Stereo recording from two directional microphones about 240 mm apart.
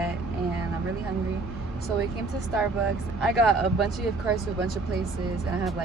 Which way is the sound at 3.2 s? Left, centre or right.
Centre.